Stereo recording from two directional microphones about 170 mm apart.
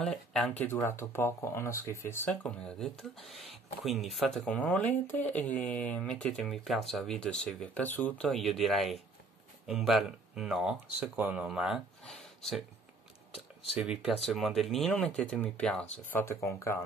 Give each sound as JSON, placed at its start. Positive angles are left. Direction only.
{"t": 0.0, "sound": "speech", "side_deg": 5}
{"t": 13.7, "sound": "speech", "side_deg": -5}